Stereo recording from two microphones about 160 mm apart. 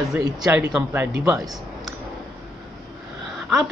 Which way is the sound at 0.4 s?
10° right (ahead or behind).